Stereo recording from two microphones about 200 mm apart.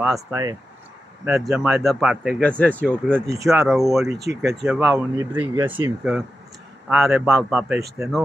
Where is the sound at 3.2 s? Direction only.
15° right (ahead or behind).